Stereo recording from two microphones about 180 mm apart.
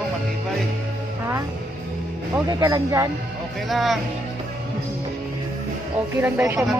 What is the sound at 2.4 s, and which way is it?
Speech, 20° right (ahead or behind).